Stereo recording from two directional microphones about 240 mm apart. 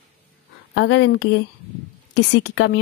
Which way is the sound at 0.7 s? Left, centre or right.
Left.